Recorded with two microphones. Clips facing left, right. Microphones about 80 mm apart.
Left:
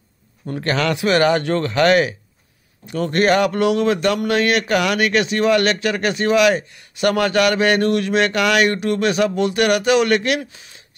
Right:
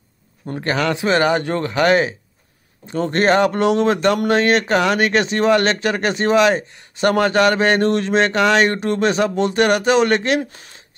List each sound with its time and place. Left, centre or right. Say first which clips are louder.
0.5 s speech: even; centre
10.5 s speech: right 2 dB; right